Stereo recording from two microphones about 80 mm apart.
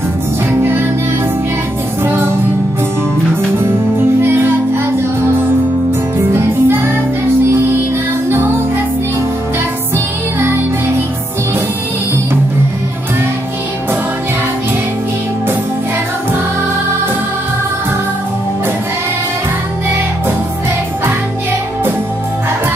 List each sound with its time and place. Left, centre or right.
4.2 s music: right